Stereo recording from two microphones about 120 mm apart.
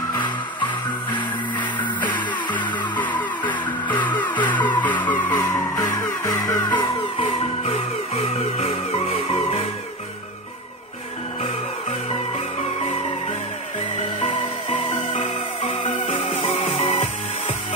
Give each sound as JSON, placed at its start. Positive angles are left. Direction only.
{"t": 0.1, "sound": "music", "side_deg": 40}
{"t": 3.2, "sound": "vehicle", "side_deg": 40}
{"t": 3.8, "sound": "music", "side_deg": 15}
{"t": 4.7, "sound": "vehicle", "side_deg": 15}
{"t": 5.3, "sound": "music", "side_deg": 30}
{"t": 6.8, "sound": "music", "side_deg": 50}
{"t": 13.9, "sound": "music", "side_deg": 65}
{"t": 16.4, "sound": "music", "side_deg": 90}